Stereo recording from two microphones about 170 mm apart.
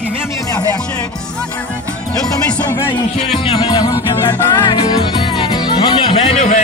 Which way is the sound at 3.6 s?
20° left (ahead or behind).